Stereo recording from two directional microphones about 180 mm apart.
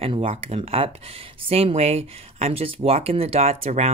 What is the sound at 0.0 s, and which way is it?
Speech, 30° right (ahead or behind).